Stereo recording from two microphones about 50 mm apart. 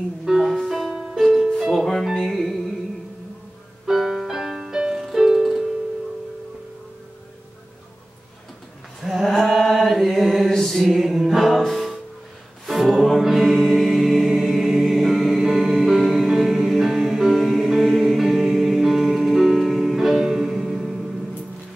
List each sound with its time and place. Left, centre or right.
0.2 s music: centre
3.8 s music: centre
9.0 s mantra: centre
10.9 s music: centre